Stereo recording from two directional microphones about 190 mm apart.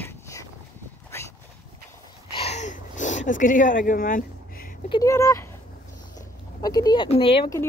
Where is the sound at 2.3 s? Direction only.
35° left (ahead or behind).